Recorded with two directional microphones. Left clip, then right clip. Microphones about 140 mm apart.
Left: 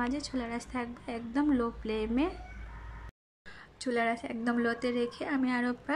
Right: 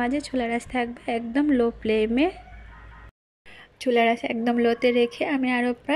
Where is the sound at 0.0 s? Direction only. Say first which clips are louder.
Right 9 dB; 20° right (ahead or behind).